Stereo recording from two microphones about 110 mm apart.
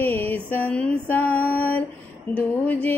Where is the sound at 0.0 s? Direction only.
15° left (ahead or behind).